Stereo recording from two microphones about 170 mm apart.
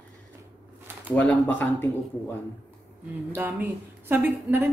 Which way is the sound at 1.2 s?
10° left (ahead or behind).